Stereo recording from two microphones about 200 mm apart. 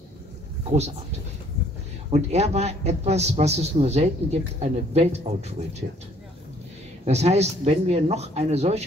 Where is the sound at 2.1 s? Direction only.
35° right (ahead or behind).